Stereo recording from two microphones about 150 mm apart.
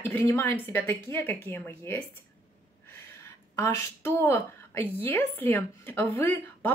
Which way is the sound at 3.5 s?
20° left (ahead or behind).